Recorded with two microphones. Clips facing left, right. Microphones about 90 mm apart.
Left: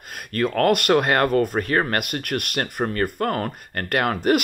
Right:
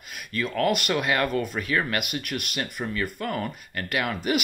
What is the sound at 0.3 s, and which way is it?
Speech, 55° left (ahead or behind).